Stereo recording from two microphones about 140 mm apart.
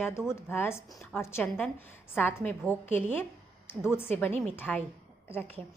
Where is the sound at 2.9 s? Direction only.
15° left (ahead or behind).